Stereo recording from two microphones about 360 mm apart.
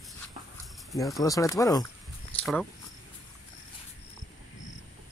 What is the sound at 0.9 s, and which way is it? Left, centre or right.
Speech, centre.